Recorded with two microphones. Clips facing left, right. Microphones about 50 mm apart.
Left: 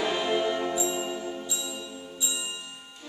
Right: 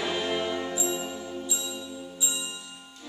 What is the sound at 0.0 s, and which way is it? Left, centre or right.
Music, centre.